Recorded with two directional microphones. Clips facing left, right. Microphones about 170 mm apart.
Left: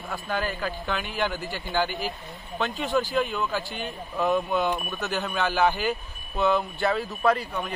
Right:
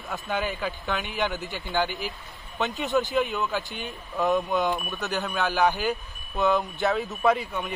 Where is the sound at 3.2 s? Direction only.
Centre (ahead or behind).